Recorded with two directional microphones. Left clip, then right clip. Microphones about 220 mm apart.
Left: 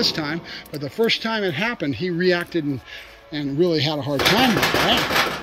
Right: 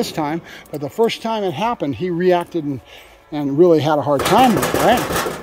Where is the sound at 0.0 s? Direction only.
10° right (ahead or behind).